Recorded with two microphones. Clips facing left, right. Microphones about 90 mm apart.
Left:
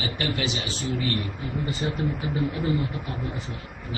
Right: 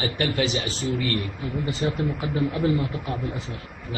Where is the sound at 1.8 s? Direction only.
80° right.